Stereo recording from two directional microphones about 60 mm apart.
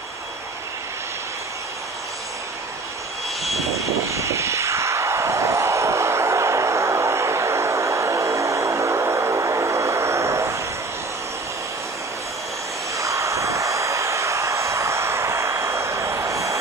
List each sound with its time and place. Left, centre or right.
4.1 s vehicle: right
12.9 s vehicle: right